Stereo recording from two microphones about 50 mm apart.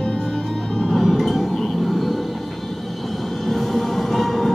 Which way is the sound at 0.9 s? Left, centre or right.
Centre.